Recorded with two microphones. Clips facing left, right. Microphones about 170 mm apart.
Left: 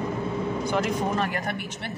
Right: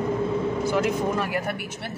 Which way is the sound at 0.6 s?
5° right (ahead or behind).